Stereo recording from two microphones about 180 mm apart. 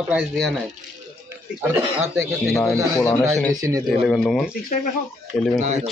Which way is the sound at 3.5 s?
20° right (ahead or behind).